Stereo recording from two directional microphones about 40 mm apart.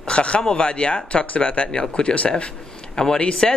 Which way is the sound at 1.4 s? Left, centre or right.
Left.